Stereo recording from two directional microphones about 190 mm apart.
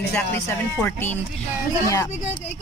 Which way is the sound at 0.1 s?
10° left (ahead or behind).